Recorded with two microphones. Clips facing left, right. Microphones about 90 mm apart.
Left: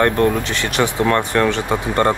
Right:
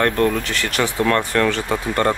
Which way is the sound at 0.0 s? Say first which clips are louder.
Left 2 dB; 25° left (ahead or behind).